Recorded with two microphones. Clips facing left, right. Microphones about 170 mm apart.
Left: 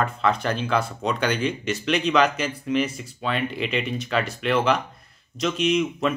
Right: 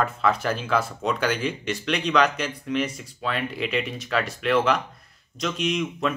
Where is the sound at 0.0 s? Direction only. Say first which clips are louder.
Even; 5° right (ahead or behind).